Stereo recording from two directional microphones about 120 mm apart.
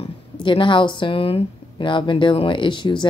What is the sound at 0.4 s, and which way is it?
Speech, 45° left (ahead or behind).